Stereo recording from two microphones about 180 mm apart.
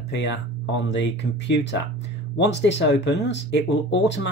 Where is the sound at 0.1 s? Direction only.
80° left.